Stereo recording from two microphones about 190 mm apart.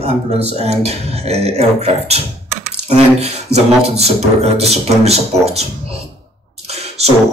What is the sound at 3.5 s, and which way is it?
Speech, 35° right (ahead or behind).